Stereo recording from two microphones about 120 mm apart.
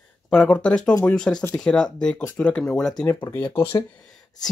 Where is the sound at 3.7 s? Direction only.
35° left (ahead or behind).